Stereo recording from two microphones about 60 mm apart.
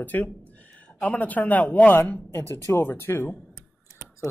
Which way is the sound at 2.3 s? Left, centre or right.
Left.